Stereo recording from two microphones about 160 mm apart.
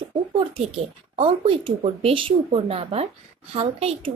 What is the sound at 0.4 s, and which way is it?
Speech, 35° right (ahead or behind).